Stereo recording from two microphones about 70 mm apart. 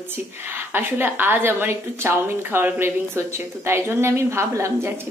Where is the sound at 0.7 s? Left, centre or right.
Right.